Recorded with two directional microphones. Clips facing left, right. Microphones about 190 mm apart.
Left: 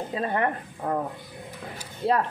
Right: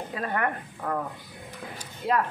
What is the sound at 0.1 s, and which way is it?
Speech, 25° left (ahead or behind).